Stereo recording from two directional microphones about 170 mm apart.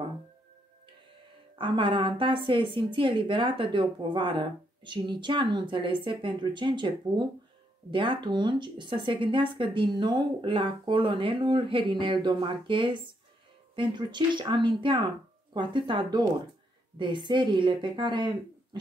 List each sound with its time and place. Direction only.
1.6 s a woman's voice: 30° right (ahead or behind)